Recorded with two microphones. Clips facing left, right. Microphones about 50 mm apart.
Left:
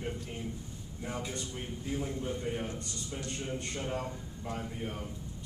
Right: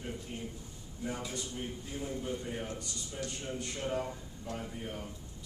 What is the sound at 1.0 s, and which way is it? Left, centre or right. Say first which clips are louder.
Speech: even; left.